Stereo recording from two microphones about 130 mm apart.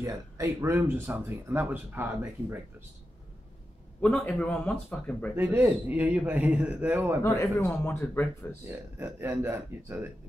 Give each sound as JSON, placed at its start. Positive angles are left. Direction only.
{"t": 0.0, "sound": "speech", "side_deg": -25}
{"t": 4.0, "sound": "a man's voice", "side_deg": 10}
{"t": 5.3, "sound": "speech", "side_deg": -15}
{"t": 7.2, "sound": "a man's voice", "side_deg": 25}
{"t": 8.6, "sound": "speech", "side_deg": -15}